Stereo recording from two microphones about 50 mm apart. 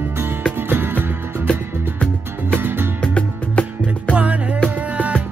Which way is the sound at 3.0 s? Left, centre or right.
Left.